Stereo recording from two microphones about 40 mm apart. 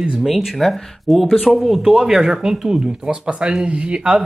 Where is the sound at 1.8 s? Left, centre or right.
Centre.